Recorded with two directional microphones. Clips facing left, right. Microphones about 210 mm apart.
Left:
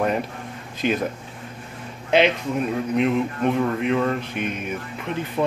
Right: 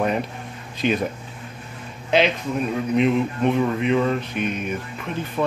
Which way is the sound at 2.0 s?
55° left (ahead or behind).